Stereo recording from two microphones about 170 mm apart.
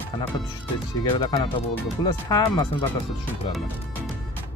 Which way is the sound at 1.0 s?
25° left (ahead or behind).